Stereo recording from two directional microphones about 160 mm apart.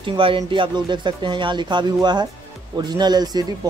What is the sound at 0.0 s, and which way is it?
Speech, 30° right (ahead or behind).